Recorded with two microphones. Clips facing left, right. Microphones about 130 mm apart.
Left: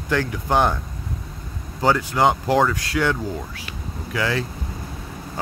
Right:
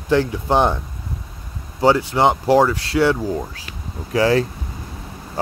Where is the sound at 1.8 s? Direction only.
25° right (ahead or behind).